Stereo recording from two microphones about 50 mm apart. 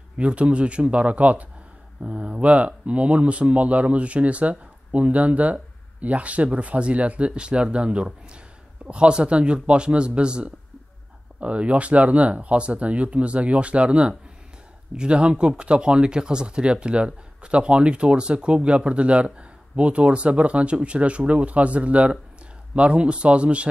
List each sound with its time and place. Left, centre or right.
0.2 s speech: right